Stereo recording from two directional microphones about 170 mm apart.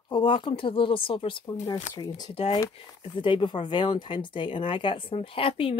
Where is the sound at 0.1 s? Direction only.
30° left (ahead or behind).